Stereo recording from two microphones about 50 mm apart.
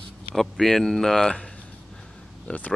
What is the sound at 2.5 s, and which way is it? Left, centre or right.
Speech, left.